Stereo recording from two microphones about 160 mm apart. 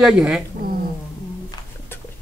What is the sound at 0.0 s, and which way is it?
Speech, 5° right (ahead or behind).